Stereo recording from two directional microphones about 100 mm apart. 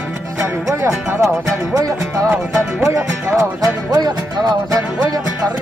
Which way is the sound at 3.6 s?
40° right (ahead or behind).